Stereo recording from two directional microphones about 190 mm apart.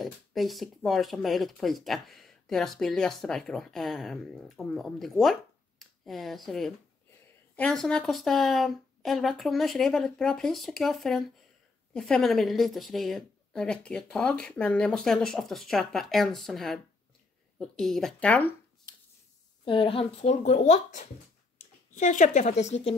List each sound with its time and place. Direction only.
0.0 s speech: centre (ahead or behind)
19.6 s speech: 25° left (ahead or behind)